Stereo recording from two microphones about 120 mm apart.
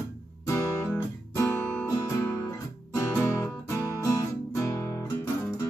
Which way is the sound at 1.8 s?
20° left (ahead or behind).